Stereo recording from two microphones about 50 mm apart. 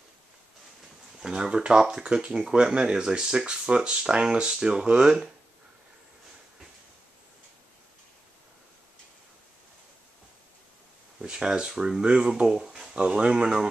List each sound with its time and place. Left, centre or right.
1.2 s speech: centre
11.1 s speech: centre
12.9 s speech: right